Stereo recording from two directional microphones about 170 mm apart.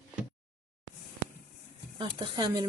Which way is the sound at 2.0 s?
25° right (ahead or behind).